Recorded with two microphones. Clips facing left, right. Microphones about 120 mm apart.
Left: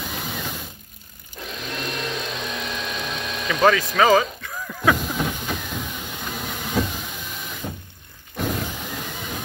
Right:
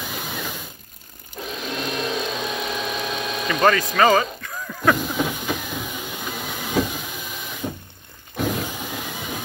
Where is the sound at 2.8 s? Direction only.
25° right (ahead or behind).